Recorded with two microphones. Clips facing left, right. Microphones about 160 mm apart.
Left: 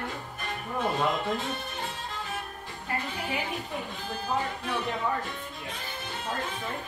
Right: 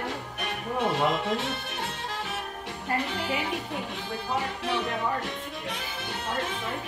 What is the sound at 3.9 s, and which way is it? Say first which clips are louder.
Music: left 1 dB; 75° right (ahead or behind).